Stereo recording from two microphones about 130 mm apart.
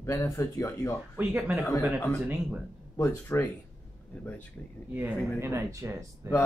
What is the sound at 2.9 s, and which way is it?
Speech, 20° left (ahead or behind).